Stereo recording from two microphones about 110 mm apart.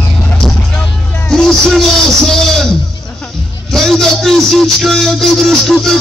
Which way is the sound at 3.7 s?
5° left (ahead or behind).